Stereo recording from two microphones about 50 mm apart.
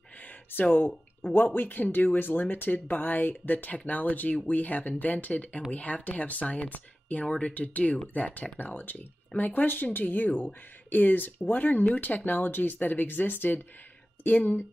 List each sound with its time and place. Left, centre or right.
0.2 s speech: left; by 7.5 s centre
7.5 s speech: left